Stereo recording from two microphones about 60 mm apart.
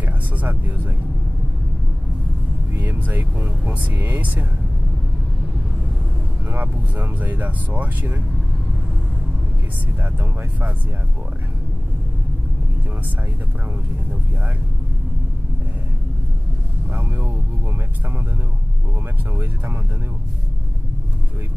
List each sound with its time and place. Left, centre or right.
0.4 s speech: right
2.7 s speech: right
6.5 s speech: right
16.9 s speech: right
19.3 s speech: right